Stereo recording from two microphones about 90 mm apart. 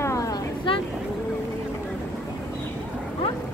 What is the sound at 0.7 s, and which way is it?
Speech, 70° left (ahead or behind).